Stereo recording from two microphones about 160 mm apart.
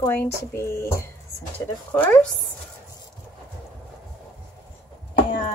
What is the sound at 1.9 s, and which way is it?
Speech, 10° left (ahead or behind).